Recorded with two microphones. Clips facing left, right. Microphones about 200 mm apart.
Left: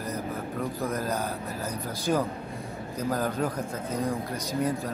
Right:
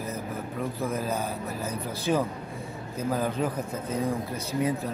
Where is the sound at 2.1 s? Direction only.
5° right (ahead or behind).